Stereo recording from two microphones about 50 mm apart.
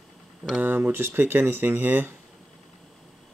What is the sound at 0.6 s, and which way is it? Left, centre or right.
Speech, right.